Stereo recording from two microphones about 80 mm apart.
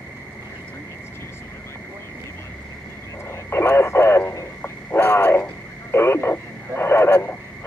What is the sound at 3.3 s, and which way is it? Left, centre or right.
Radio, left.